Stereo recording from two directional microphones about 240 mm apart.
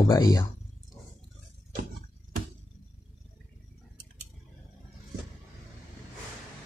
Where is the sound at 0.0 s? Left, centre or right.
Centre.